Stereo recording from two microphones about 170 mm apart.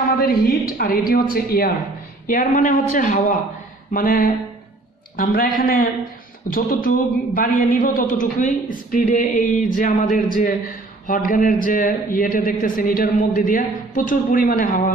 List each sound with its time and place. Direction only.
0.2 s a woman's voice: 65° left (ahead or behind)